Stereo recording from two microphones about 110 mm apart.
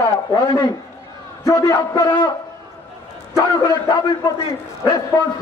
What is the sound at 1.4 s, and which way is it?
Speech, 30° left (ahead or behind).